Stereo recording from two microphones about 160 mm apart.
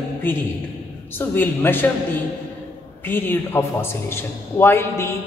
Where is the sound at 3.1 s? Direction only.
15° left (ahead or behind).